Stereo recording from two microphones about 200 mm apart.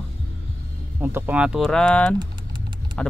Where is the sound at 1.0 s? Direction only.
10° right (ahead or behind).